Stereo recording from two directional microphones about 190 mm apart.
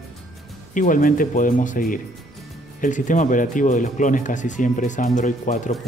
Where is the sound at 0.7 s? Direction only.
45° left (ahead or behind).